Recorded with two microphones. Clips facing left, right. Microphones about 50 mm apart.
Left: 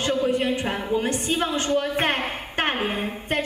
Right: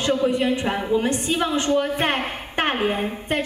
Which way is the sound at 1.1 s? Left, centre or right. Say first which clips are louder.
Right 2 dB; right.